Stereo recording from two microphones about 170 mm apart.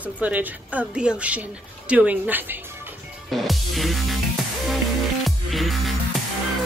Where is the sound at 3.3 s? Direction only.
Centre (ahead or behind).